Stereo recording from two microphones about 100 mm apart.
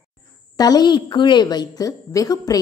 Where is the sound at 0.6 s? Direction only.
40° left (ahead or behind).